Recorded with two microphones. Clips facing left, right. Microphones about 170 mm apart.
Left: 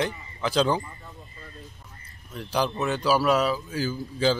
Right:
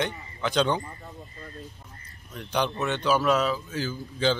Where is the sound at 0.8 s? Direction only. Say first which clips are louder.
Right 1 dB; 40° right (ahead or behind).